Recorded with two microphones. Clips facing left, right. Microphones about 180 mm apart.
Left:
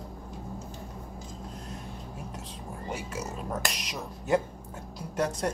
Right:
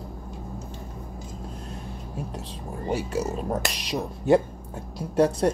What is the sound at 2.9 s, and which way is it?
Speech, 35° right (ahead or behind).